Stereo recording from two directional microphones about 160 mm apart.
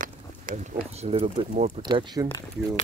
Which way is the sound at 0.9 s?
40° right (ahead or behind).